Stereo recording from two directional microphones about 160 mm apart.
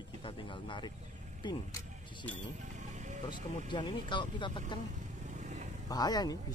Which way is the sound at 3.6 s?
30° left (ahead or behind).